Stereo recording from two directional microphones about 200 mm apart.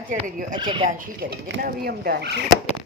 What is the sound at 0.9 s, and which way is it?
Speech, 50° right (ahead or behind).